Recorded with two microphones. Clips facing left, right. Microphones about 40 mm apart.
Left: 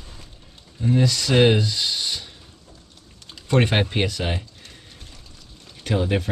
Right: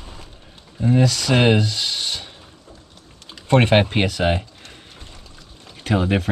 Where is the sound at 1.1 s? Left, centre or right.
Right.